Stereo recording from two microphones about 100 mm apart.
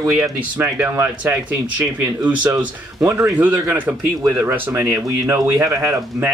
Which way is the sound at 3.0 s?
30° right (ahead or behind).